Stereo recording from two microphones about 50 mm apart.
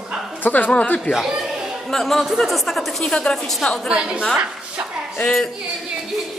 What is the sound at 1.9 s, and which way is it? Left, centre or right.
Speech, centre.